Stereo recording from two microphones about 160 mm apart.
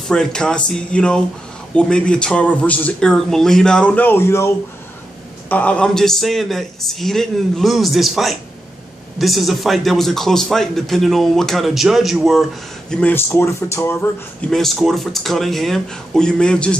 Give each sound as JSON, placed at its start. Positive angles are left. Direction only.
{"t": 0.1, "sound": "a man's voice", "side_deg": 5}
{"t": 5.5, "sound": "speech", "side_deg": 10}
{"t": 12.9, "sound": "a man's voice", "side_deg": 10}
{"t": 14.5, "sound": "speech", "side_deg": 0}